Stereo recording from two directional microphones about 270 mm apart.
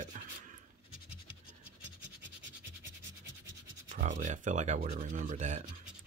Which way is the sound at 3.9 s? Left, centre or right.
Right.